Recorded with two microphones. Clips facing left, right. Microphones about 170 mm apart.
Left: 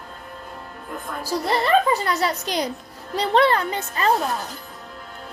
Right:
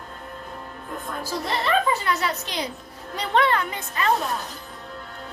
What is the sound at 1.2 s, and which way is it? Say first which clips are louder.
A woman's voice: left 5 dB; 35° left (ahead or behind).